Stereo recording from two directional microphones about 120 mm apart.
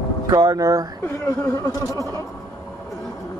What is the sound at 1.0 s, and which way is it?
Speech, 20° left (ahead or behind).